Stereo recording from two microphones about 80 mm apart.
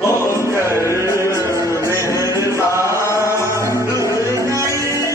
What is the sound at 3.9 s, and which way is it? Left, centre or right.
Music, left.